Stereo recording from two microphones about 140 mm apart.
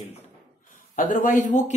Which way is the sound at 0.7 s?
70° left (ahead or behind).